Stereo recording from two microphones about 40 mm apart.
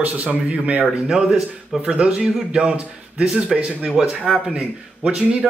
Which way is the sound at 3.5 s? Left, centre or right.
Centre.